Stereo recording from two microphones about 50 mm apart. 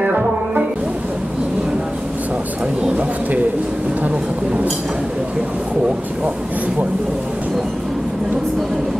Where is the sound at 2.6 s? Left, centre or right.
Centre.